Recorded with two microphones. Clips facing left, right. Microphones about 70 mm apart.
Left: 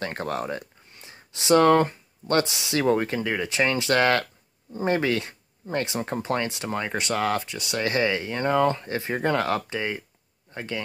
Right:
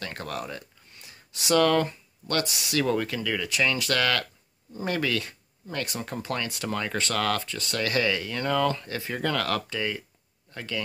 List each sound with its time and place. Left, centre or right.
0.0 s speech: left